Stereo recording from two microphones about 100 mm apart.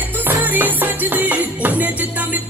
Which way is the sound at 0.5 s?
20° right (ahead or behind).